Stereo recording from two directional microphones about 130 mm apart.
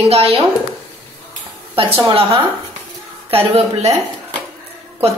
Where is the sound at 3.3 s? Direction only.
50° right (ahead or behind).